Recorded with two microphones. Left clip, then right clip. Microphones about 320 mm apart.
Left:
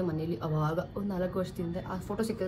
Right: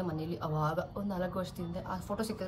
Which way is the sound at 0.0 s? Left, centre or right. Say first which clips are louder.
Left 4 dB; centre.